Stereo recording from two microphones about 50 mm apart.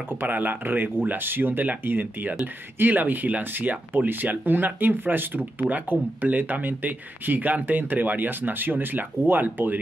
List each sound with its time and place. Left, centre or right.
0.2 s speech: right